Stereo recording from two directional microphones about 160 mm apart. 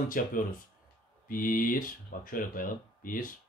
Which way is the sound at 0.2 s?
60° left (ahead or behind).